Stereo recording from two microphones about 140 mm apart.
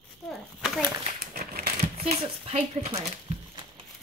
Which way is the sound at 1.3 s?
90° right.